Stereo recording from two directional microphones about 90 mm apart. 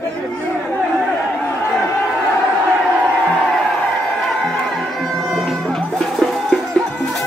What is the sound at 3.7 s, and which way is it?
Music, 5° left (ahead or behind).